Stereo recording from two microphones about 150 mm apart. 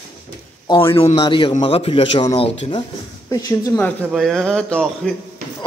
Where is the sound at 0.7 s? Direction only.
35° left (ahead or behind).